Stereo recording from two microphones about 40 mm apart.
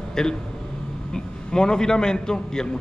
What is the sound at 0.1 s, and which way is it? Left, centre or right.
A man's voice, centre.